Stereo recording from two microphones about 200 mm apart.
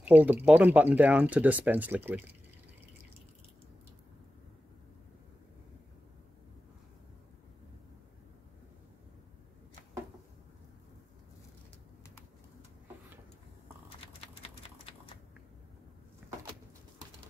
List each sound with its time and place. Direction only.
0.0 s speech: 10° right (ahead or behind)
14.2 s a sound: 30° left (ahead or behind)
16.2 s vehicle: 5° right (ahead or behind)